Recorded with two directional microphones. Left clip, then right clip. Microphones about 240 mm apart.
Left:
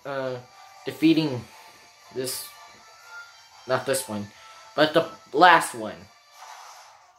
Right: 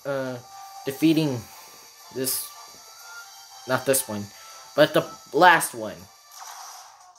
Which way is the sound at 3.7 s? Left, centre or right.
Right.